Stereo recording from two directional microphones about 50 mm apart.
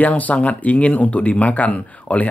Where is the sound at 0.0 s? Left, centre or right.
Left.